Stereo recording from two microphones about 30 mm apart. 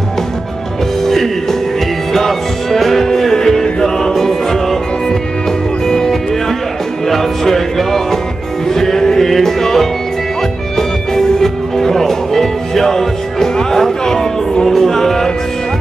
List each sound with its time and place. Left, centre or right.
1.0 s music: centre
5.9 s music: centre